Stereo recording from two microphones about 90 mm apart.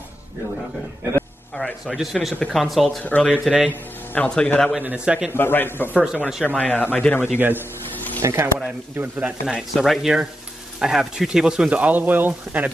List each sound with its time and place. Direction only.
1.5 s speech: centre (ahead or behind)
3.0 s speech: 10° left (ahead or behind)
4.7 s speech: 10° right (ahead or behind)
5.3 s speech: 25° left (ahead or behind)
5.9 s speech: 10° right (ahead or behind)
6.5 s speech: 15° left (ahead or behind)
7.3 s a man's voice: 20° right (ahead or behind)
8.6 s speech: 15° right (ahead or behind)
9.6 s speech: 5° right (ahead or behind); by 12.7 s 20° right (ahead or behind)